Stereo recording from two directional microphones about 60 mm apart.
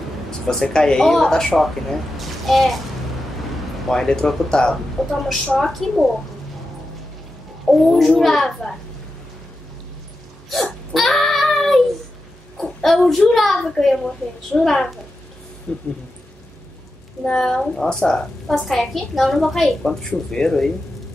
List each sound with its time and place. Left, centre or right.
0.5 s a woman's voice: centre
3.8 s a woman's voice: centre
7.8 s a woman's voice: centre
10.5 s hiccup: centre
12.5 s a sound: centre
13.3 s a woman's voice: centre
15.7 s speech: left
17.2 s a woman's voice: centre